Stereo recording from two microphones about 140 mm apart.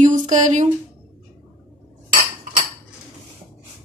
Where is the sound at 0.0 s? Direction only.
60° right (ahead or behind).